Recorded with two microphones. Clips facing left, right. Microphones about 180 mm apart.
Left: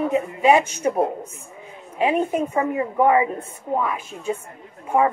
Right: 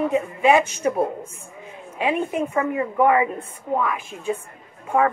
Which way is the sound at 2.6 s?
25° left (ahead or behind).